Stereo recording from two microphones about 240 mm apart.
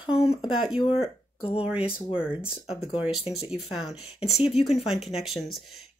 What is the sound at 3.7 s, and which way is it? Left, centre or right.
Speech, centre.